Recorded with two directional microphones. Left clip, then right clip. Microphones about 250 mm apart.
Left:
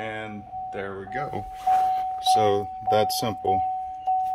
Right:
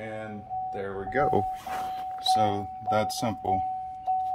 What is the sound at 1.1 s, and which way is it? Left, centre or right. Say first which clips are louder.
Speech: right 8 dB; right.